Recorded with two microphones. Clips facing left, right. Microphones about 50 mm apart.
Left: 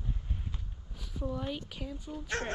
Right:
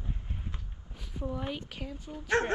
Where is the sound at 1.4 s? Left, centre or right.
Right.